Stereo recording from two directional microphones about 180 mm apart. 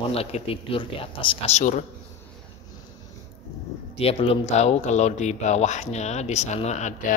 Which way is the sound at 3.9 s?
35° left (ahead or behind).